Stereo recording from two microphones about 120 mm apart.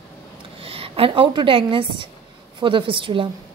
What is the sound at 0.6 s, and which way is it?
A woman's voice, 50° right (ahead or behind).